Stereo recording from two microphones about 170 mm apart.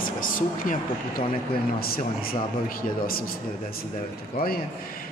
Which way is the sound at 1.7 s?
60° left (ahead or behind).